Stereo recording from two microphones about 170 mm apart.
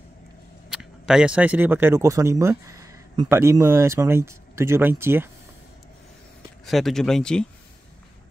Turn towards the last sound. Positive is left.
turn(degrees=5)  # may be behind; listen again after turning